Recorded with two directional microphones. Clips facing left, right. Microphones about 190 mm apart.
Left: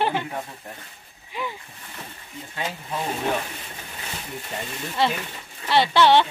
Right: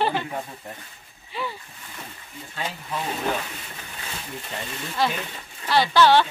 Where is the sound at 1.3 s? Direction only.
15° left (ahead or behind).